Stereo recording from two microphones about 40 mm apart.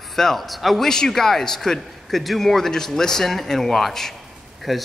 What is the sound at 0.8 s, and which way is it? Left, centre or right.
A man's voice, centre.